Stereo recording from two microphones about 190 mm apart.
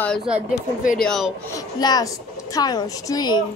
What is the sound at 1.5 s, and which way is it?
A woman's voice, 20° left (ahead or behind).